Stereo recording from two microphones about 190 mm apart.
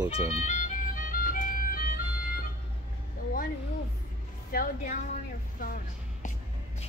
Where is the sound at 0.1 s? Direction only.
35° left (ahead or behind).